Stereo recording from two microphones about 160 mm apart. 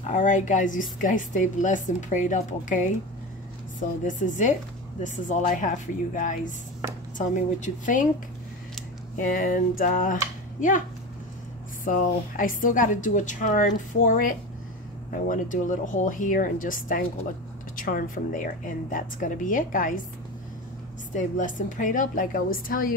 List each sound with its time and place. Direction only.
0.0 s a woman's voice: 50° left (ahead or behind)
9.1 s a woman's voice: 60° left (ahead or behind)
11.8 s a woman's voice: 60° left (ahead or behind)
21.1 s a woman's voice: 50° left (ahead or behind)